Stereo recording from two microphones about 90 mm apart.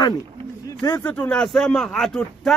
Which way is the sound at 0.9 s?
20° left (ahead or behind).